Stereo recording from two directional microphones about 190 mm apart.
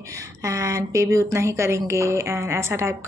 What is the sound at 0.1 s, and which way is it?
Speech, 15° right (ahead or behind).